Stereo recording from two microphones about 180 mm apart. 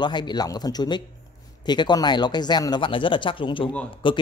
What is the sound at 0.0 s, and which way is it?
Speech, 25° left (ahead or behind).